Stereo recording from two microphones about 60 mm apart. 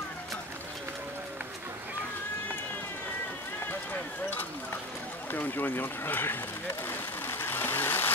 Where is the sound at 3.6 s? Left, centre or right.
Left.